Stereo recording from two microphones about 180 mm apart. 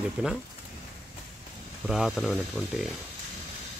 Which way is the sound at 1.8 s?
Centre (ahead or behind).